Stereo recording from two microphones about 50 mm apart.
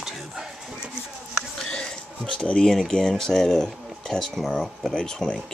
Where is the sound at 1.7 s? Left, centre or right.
Centre.